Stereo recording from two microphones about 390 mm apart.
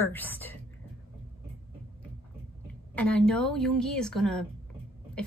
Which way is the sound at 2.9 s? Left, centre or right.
Centre.